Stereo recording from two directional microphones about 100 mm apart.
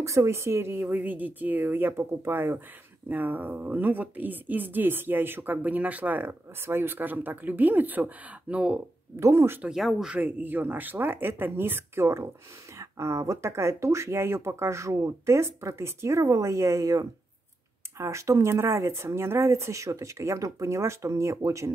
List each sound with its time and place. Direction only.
0.0 s speech: 30° right (ahead or behind); by 8.8 s 10° right (ahead or behind)
9.2 s speech: 25° right (ahead or behind)
9.6 s speech: 5° right (ahead or behind)
10.2 s speech: 20° right (ahead or behind)